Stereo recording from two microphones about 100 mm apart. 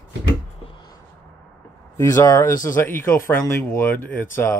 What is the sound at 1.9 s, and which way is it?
Speech, 30° left (ahead or behind).